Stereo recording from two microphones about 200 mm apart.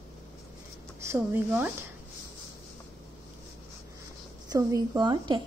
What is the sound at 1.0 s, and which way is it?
Speech, 10° right (ahead or behind).